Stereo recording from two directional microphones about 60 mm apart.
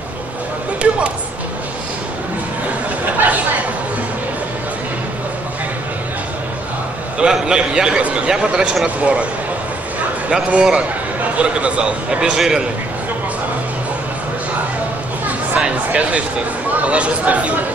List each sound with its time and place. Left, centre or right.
3.2 s chatter: right
7.2 s a man's voice: centre
10.3 s a man's voice: centre
15.2 s speech: right